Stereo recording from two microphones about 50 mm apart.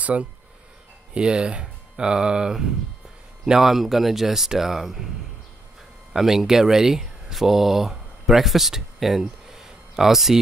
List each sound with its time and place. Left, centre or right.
0.0 s speech: right; by 5.1 s centre
6.1 s speech: centre